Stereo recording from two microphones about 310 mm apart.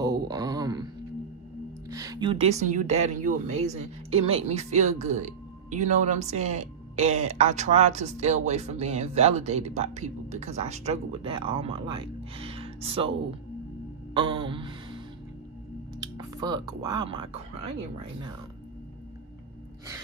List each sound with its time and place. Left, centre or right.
0.0 s mantra: centre
1.9 s speech: centre
14.1 s music: centre
16.0 s speech: centre